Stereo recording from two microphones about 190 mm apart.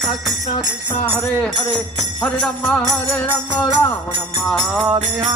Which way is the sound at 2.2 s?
Centre (ahead or behind).